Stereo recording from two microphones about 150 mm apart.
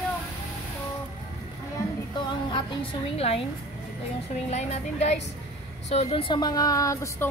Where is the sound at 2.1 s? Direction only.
35° left (ahead or behind).